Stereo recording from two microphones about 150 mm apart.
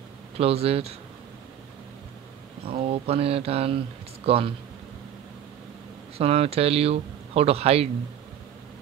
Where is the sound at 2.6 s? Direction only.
40° right (ahead or behind).